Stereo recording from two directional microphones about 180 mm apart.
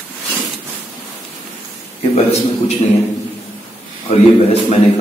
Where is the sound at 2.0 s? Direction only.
35° left (ahead or behind).